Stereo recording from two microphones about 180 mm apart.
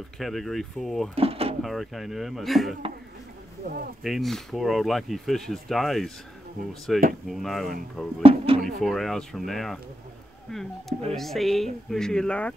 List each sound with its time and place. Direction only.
0.2 s speech: centre (ahead or behind)
1.1 s drawer open or close: 30° right (ahead or behind)
1.6 s speech: centre (ahead or behind)
3.6 s speech: 50° right (ahead or behind)
4.0 s speech: centre (ahead or behind)
8.2 s speech: 30° right (ahead or behind)
8.6 s speech: centre (ahead or behind)